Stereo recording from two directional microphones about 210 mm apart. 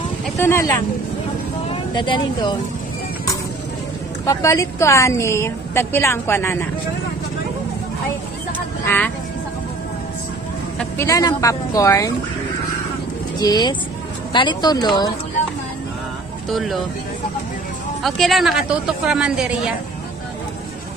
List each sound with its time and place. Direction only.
0.4 s a woman's voice: 10° left (ahead or behind)
4.3 s a woman's voice: 15° left (ahead or behind)
8.8 s a woman's voice: 10° left (ahead or behind)
10.8 s a woman's voice: 15° left (ahead or behind)
13.4 s speech: 20° left (ahead or behind)
16.4 s speech: centre (ahead or behind)
18.0 s a woman's voice: centre (ahead or behind)